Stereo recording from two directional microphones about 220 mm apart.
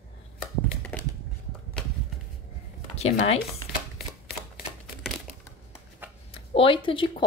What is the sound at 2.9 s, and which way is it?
Speech, 30° left (ahead or behind).